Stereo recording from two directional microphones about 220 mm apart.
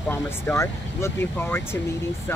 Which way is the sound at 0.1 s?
10° left (ahead or behind).